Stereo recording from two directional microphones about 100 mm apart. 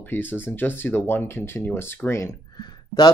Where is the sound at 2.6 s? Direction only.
40° left (ahead or behind).